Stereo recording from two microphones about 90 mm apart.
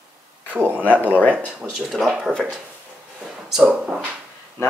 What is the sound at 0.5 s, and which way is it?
Speech, 20° right (ahead or behind).